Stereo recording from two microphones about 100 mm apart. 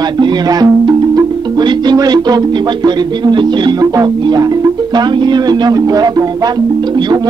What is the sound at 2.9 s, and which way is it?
Music, 45° right (ahead or behind).